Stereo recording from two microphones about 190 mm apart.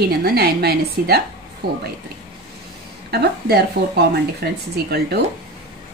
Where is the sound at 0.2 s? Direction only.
55° right (ahead or behind).